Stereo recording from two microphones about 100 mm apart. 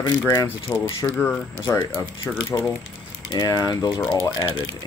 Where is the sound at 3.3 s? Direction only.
40° left (ahead or behind).